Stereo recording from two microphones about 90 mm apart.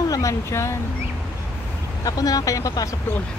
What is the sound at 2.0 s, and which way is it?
Speech, 45° left (ahead or behind).